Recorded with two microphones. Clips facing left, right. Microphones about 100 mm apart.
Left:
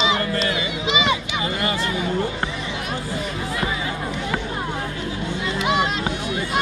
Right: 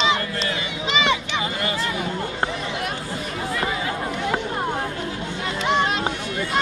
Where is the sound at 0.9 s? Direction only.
10° left (ahead or behind).